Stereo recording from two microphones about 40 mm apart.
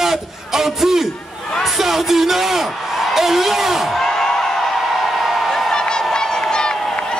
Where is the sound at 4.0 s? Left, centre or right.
Centre.